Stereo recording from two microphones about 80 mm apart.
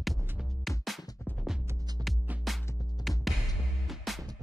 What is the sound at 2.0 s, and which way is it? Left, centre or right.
Music, right.